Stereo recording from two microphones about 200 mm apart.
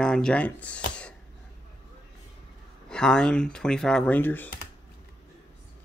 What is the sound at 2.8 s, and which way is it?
Speech, 5° left (ahead or behind).